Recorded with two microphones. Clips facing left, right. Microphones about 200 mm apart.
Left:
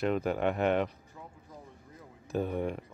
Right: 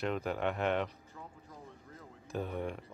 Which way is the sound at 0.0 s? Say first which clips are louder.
Left 5 dB; 5° left (ahead or behind).